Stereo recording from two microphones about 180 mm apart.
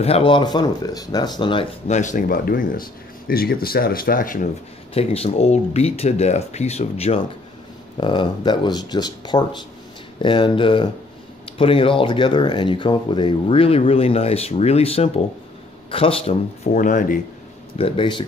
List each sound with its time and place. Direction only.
0.0 s speech: 30° left (ahead or behind)
2.0 s speech: 45° left (ahead or behind)
4.9 s speech: 35° left (ahead or behind)
17.7 s speech: 30° left (ahead or behind)